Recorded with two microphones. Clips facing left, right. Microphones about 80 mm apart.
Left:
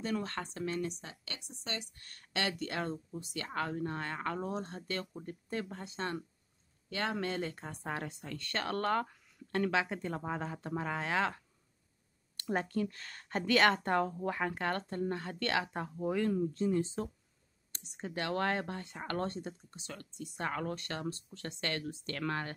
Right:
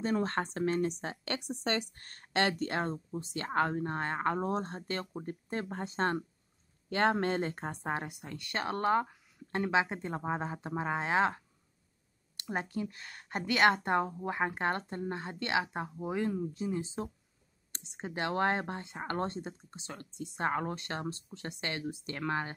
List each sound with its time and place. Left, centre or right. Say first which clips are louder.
0.0 s speech: right 5 dB; right
2.0 s speech: right 5 dB; right
12.4 s speech: left 2 dB; centre